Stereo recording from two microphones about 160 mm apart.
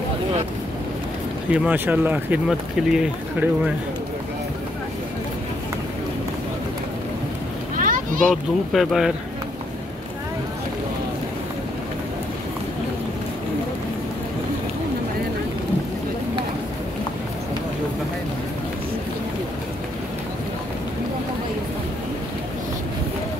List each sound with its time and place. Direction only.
1.5 s speech: 10° right (ahead or behind)
7.7 s a sound: 55° right (ahead or behind)
8.3 s speech: centre (ahead or behind)